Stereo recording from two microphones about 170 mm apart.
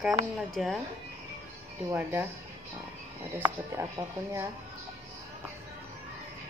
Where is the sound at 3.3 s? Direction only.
15° right (ahead or behind).